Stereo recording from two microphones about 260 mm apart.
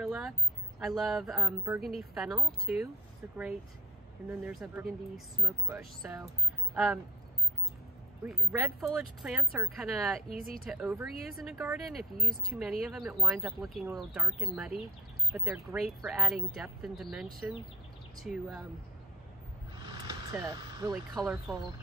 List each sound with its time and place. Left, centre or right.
0.0 s a sound: centre
0.7 s speech: centre
4.3 s speech: centre
8.2 s speech: centre
10.3 s speech: right
10.6 s speech: centre
19.8 s vehicle: centre
21.1 s speech: centre